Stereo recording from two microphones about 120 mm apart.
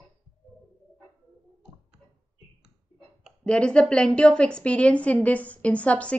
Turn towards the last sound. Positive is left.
turn(degrees=10)  # may be behind; listen again after turning